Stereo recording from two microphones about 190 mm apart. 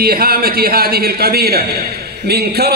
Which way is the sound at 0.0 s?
55° right (ahead or behind).